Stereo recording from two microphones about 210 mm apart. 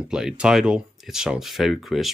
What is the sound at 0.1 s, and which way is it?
Speech, 5° right (ahead or behind).